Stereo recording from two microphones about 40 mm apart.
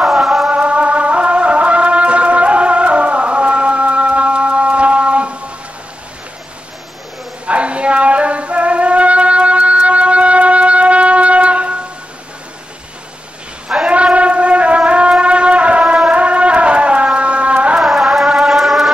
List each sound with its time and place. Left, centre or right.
0.0 s music: centre
0.5 s music: right
7.4 s music: right
13.7 s shofar: right
16.1 s music: right
17.7 s music: centre